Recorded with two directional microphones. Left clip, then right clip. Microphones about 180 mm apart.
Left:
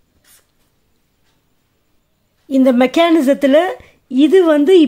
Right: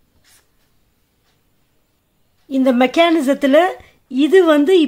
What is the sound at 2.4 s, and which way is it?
A woman's voice, 25° left (ahead or behind).